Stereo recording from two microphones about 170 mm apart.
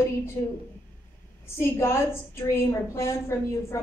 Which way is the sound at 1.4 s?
15° left (ahead or behind).